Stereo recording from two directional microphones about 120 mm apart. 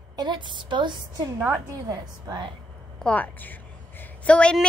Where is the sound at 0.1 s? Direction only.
40° right (ahead or behind).